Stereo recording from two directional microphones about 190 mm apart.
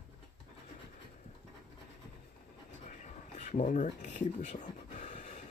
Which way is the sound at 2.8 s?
40° left (ahead or behind).